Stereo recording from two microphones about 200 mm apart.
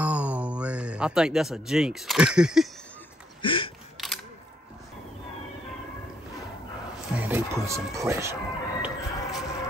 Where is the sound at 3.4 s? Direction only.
25° left (ahead or behind).